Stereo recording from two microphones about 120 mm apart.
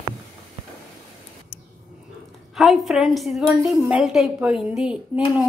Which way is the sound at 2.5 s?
Centre (ahead or behind).